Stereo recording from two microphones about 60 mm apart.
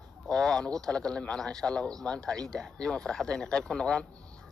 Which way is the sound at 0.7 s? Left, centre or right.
Centre.